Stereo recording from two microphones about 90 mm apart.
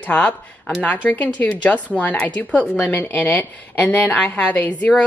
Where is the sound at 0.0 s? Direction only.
15° left (ahead or behind).